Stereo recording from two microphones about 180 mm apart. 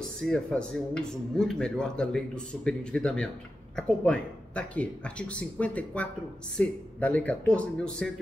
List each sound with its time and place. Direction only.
0.2 s speech: 5° left (ahead or behind)